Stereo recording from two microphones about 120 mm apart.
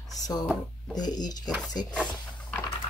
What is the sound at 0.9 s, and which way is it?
Speech, 35° left (ahead or behind).